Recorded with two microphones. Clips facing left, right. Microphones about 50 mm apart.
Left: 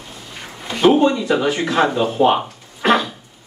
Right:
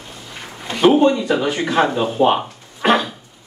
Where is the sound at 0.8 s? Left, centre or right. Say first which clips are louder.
Right 1 dB; centre.